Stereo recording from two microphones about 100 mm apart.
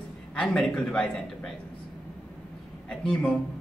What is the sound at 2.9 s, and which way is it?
Speech, 10° left (ahead or behind).